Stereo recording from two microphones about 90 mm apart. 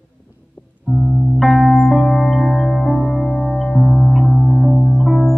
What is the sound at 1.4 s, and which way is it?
Music, centre (ahead or behind).